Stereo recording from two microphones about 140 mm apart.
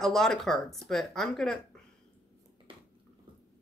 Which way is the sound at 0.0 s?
5° left (ahead or behind).